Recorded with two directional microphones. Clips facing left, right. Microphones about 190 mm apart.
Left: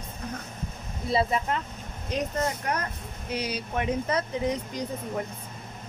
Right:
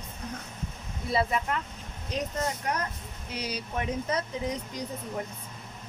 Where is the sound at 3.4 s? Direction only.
65° left (ahead or behind).